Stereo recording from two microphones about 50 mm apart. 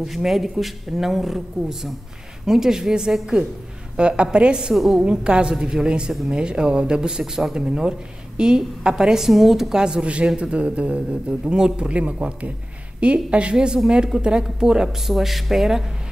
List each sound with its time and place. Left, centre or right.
0.0 s a woman's voice: centre
4.7 s a woman's voice: centre
5.0 s a man's voice: centre